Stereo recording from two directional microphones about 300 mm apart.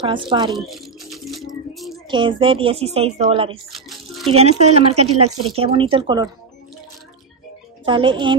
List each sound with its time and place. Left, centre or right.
0.0 s a woman's voice: centre
0.7 s a sound: centre
2.0 s a woman's voice: centre
7.8 s a woman's voice: centre